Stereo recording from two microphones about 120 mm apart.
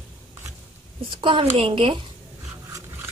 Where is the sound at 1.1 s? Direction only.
45° right (ahead or behind).